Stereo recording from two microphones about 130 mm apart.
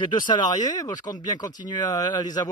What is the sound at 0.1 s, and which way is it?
Speech, 30° left (ahead or behind).